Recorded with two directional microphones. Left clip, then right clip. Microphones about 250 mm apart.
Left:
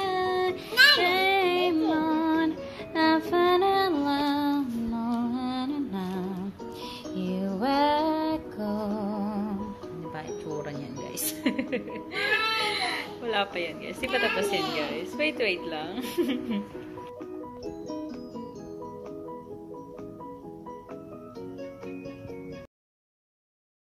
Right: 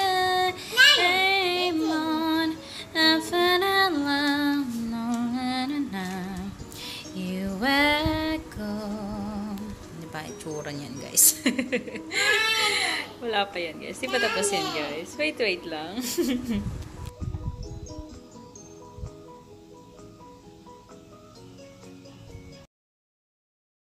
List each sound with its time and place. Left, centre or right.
0.0 s child singing: centre
2.0 s music: centre
10.1 s music: centre